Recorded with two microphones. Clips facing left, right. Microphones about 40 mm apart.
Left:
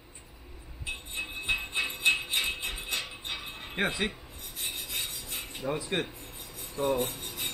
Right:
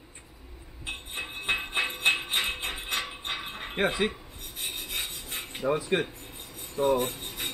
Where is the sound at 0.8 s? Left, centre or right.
Right.